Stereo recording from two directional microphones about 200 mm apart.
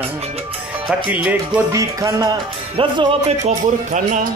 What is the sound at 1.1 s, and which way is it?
Speech, 5° right (ahead or behind).